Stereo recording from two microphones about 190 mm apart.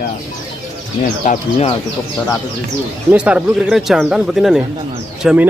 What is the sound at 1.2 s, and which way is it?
Speech, 30° left (ahead or behind).